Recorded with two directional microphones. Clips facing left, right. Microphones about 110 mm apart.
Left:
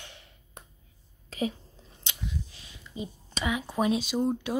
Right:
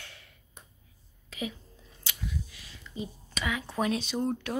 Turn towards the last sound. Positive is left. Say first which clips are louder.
# left 3 dB
turn(degrees=15)  # may be behind; listen again after turning